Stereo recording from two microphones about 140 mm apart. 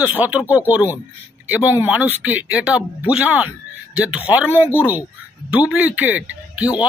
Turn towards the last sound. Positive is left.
turn(degrees=-10)  # may be behind; listen again after turning